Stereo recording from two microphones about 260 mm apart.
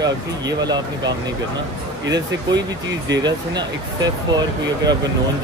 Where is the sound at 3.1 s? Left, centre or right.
Centre.